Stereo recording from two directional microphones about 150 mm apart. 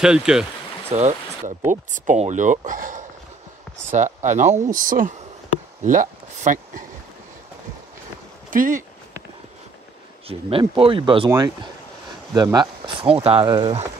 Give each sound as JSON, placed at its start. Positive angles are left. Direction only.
{"t": 0.0, "sound": "speech", "side_deg": -5}
{"t": 0.8, "sound": "speech", "side_deg": -50}
{"t": 8.5, "sound": "speech", "side_deg": -65}
{"t": 10.8, "sound": "speech", "side_deg": -35}
{"t": 11.2, "sound": "speech", "side_deg": -20}
{"t": 12.5, "sound": "speech", "side_deg": -35}